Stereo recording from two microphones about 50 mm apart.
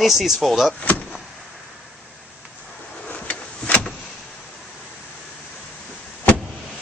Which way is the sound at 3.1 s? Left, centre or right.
Left.